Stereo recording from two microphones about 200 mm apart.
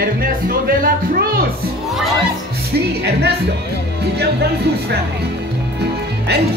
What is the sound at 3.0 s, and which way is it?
Speech, 55° right (ahead or behind).